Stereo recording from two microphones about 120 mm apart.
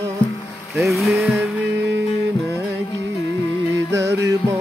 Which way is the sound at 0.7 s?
Centre (ahead or behind).